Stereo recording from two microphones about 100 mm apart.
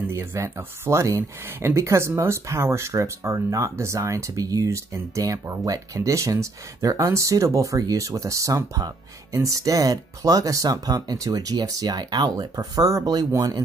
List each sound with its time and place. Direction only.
0.1 s speech: 25° right (ahead or behind)